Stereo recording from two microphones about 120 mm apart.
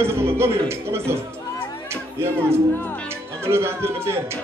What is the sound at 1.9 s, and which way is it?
Music, 20° right (ahead or behind).